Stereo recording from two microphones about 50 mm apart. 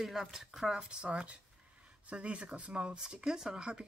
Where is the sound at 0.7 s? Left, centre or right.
Centre.